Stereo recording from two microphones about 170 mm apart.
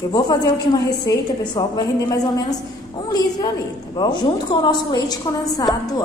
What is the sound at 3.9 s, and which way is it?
A woman's voice, 25° left (ahead or behind).